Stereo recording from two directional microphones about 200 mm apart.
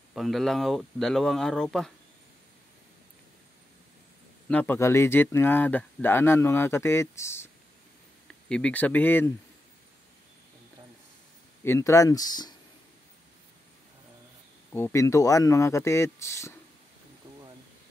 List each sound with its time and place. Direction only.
0.1 s speech: centre (ahead or behind)
4.5 s speech: 10° left (ahead or behind)
11.6 s speech: 15° left (ahead or behind)
14.7 s speech: 10° left (ahead or behind)